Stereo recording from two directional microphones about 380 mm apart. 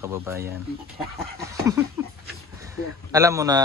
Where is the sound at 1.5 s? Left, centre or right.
Centre.